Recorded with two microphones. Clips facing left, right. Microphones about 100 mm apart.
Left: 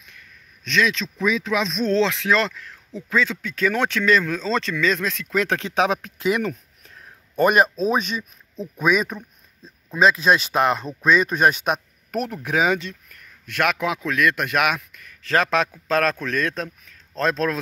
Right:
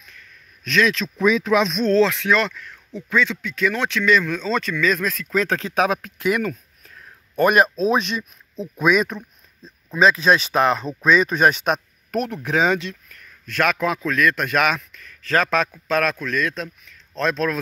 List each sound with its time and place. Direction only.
0.7 s speech: centre (ahead or behind)
1.9 s a man's voice: 25° left (ahead or behind); by 4.2 s 45° left (ahead or behind)
4.3 s speech: 35° left (ahead or behind)
7.3 s a man's voice: 10° left (ahead or behind); by 17.6 s 30° left (ahead or behind)